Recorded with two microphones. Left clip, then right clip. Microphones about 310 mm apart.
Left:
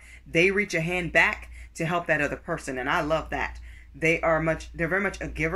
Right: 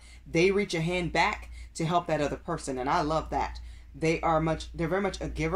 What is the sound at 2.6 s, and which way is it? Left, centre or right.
Speech, right.